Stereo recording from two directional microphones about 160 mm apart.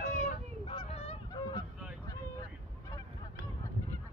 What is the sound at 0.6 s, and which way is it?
Goose, 35° left (ahead or behind).